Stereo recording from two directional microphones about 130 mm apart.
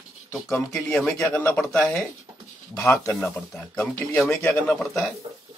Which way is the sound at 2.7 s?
20° left (ahead or behind).